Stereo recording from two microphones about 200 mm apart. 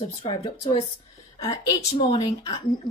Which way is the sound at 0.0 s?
25° left (ahead or behind).